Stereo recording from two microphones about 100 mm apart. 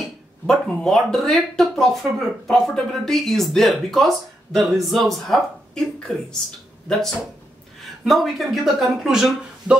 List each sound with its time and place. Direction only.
0.5 s speech: 5° left (ahead or behind)